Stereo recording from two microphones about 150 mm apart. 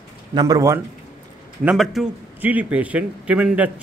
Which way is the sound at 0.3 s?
25° right (ahead or behind).